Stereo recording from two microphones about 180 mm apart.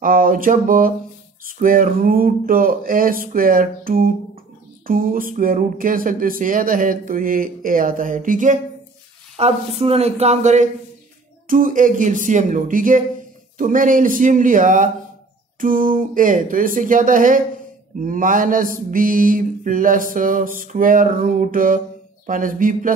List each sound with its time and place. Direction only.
0.0 s mantra: 50° right (ahead or behind)
9.4 s speech: 35° right (ahead or behind)
11.4 s mantra: 50° right (ahead or behind)